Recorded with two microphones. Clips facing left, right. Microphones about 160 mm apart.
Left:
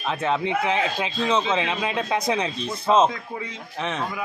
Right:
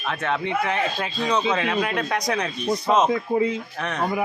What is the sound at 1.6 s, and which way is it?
Speech, 25° left (ahead or behind).